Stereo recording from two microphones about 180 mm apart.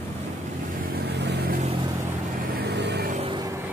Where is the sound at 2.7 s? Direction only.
70° right (ahead or behind).